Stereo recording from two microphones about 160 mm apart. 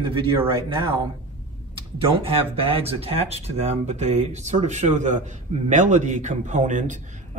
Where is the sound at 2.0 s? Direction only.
35° right (ahead or behind).